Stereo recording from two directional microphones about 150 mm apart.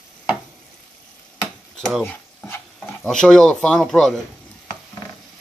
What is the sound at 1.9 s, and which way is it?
Speech, 5° left (ahead or behind).